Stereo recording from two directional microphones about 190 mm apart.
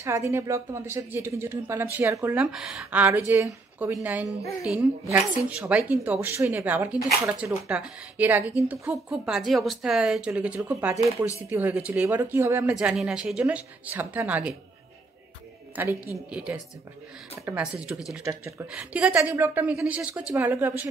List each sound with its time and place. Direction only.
0.0 s a woman's voice: 15° right (ahead or behind)
4.4 s speech: 15° left (ahead or behind)
4.6 s a woman's voice: 5° right (ahead or behind)
15.7 s a woman's voice: 15° right (ahead or behind)